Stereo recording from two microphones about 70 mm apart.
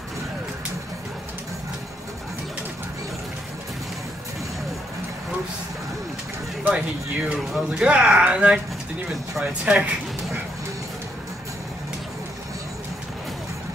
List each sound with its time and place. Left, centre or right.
6.6 s speech: centre